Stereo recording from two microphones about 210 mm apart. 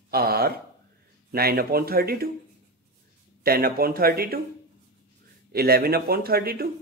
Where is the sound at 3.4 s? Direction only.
45° right (ahead or behind).